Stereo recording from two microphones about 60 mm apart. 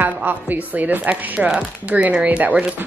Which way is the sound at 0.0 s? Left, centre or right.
Right.